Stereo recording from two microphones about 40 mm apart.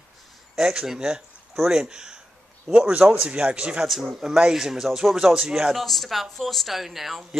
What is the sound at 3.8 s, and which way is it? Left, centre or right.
A man's voice, centre.